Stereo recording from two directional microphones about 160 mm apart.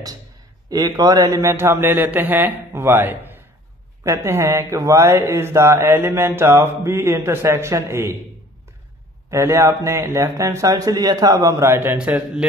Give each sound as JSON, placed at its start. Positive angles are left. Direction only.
{"t": 0.7, "sound": "speech", "side_deg": -25}
{"t": 9.3, "sound": "speech", "side_deg": -15}